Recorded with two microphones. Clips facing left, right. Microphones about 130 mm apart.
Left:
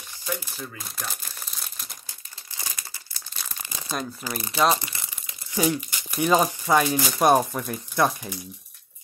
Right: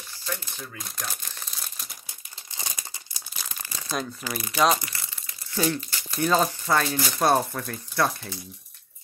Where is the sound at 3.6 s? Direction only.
20° left (ahead or behind).